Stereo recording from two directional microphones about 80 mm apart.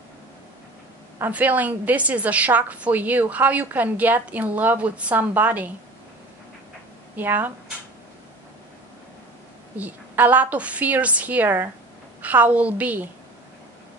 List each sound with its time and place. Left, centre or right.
1.2 s a woman's voice: right
7.2 s a woman's voice: right
9.8 s a woman's voice: right